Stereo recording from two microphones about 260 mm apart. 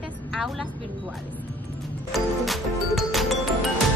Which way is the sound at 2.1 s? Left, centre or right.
Centre.